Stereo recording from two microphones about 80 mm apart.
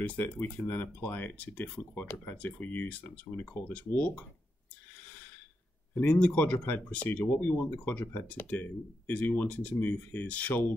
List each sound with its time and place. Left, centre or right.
0.0 s speech: left
5.9 s speech: centre